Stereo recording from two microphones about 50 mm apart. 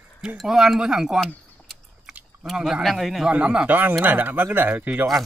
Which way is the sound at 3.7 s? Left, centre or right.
Right.